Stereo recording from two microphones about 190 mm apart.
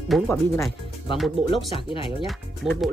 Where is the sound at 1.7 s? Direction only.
30° left (ahead or behind).